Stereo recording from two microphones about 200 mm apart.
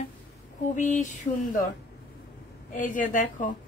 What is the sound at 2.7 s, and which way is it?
Speech, 40° left (ahead or behind).